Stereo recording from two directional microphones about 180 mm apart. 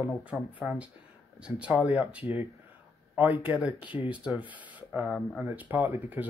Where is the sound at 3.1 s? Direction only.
10° right (ahead or behind).